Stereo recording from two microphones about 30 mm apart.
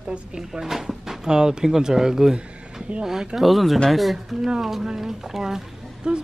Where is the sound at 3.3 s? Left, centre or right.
Centre.